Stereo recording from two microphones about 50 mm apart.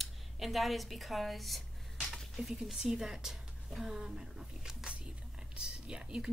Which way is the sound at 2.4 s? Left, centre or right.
Centre.